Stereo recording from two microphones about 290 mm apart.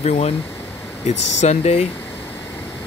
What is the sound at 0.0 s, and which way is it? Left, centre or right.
Speech, left.